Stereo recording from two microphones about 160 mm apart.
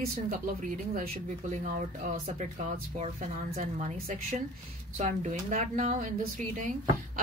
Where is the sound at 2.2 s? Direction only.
40° right (ahead or behind).